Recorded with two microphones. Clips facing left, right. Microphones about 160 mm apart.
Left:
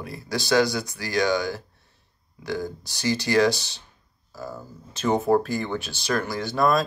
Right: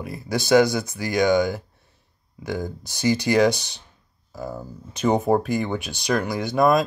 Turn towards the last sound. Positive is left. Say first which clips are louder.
# right 3 dB
turn(degrees=-20)  # may be behind; listen again after turning